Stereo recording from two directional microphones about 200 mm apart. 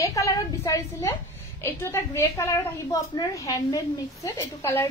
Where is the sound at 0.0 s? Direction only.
15° left (ahead or behind).